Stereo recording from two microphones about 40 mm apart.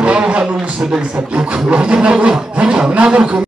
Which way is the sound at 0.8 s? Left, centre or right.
Right.